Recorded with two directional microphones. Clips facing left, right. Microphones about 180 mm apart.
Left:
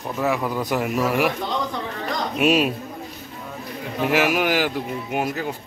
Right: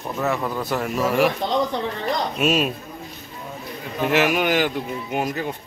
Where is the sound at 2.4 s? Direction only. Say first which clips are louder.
Left 4 dB; 10° left (ahead or behind).